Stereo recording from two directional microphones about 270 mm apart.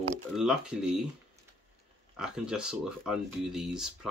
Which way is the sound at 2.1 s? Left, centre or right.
Centre.